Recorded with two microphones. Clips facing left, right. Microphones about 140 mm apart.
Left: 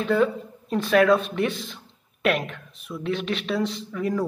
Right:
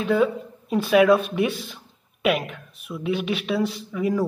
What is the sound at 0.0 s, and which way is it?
Speech, 5° right (ahead or behind).